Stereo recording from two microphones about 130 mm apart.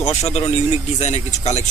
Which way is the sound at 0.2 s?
55° left (ahead or behind).